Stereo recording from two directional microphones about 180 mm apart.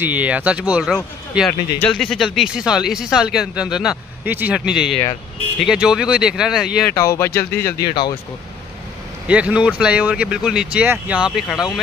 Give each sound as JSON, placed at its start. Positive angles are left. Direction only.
{"t": 0.0, "sound": "speech", "side_deg": -10}
{"t": 6.9, "sound": "speech", "side_deg": 15}
{"t": 7.8, "sound": "speech", "side_deg": 25}
{"t": 9.3, "sound": "speech", "side_deg": -5}